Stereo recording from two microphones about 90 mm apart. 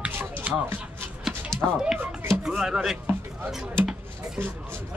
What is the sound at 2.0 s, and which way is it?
Chopping, 25° right (ahead or behind).